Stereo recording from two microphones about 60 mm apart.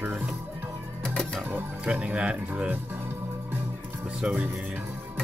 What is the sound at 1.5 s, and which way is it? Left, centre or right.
Speech, right.